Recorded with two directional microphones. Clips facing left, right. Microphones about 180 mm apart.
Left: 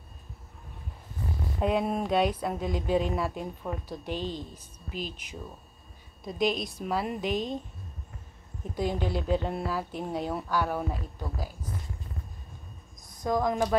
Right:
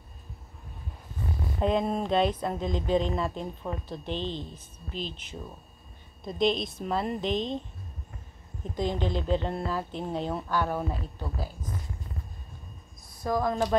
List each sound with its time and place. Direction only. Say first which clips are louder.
1.6 s speech: right 1 dB; 10° left (ahead or behind)
6.2 s speech: right 2 dB; 5° left (ahead or behind)
8.7 s speech: even; 10° left (ahead or behind)
13.2 s speech: even; 15° left (ahead or behind)